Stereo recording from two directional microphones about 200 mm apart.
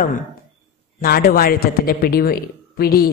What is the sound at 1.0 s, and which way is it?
A woman's voice, 50° left (ahead or behind).